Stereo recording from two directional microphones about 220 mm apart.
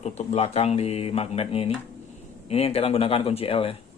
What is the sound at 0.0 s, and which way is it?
Speech, 30° left (ahead or behind).